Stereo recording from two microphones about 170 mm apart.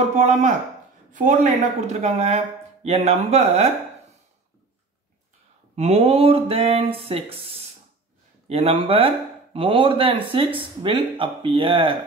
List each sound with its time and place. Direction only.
0.2 s a man's voice: 40° right (ahead or behind)
5.8 s speech: 35° right (ahead or behind)